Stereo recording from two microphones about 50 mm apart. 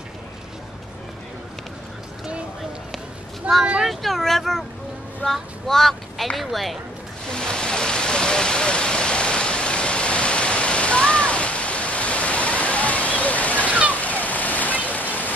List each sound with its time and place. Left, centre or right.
3.4 s speech: right
3.8 s speech: centre
7.2 s a sound: centre
13.9 s stream: left